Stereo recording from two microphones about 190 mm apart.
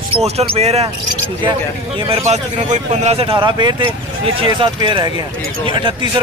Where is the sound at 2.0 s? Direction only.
35° right (ahead or behind).